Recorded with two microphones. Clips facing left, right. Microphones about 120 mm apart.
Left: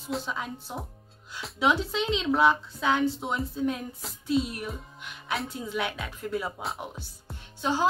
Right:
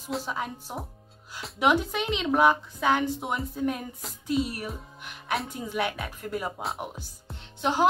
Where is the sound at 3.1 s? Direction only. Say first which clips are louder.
Even; 10° right (ahead or behind).